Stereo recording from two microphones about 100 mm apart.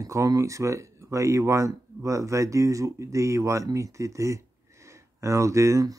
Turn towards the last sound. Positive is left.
turn(degrees=-30)  # may be behind; listen again after turning